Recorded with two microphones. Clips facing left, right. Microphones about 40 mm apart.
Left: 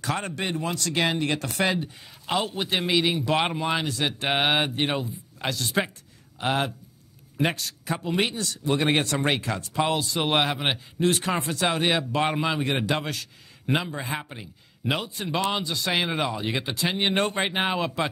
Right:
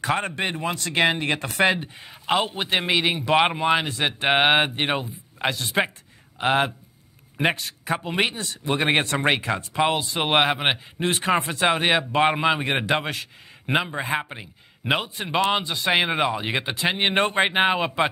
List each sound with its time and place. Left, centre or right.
0.0 s a man's voice: right